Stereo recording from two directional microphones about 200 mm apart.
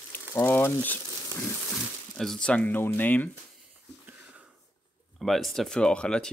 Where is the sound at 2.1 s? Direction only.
Centre (ahead or behind).